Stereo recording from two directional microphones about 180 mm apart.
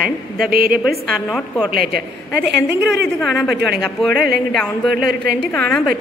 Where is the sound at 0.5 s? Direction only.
55° right (ahead or behind).